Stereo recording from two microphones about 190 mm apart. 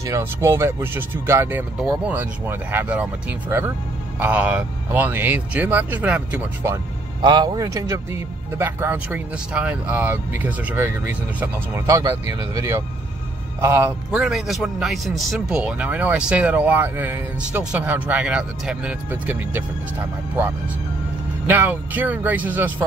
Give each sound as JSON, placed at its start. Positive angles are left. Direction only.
{"t": 0.0, "sound": "speech", "side_deg": -15}
{"t": 21.5, "sound": "speech", "side_deg": -10}